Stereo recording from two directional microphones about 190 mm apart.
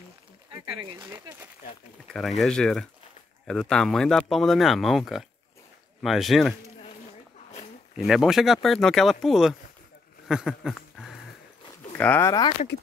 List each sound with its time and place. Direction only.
0.9 s speech: 25° right (ahead or behind)
2.1 s speech: centre (ahead or behind)
8.1 s speech: centre (ahead or behind)
10.2 s a sound: centre (ahead or behind)
12.0 s speech: 10° left (ahead or behind)
12.3 s speech: 20° left (ahead or behind)